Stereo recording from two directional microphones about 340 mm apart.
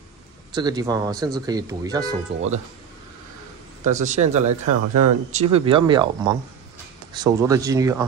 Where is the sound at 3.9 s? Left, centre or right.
Right.